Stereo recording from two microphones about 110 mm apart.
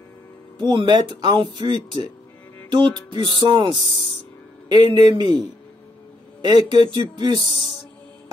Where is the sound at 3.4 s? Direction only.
45° right (ahead or behind).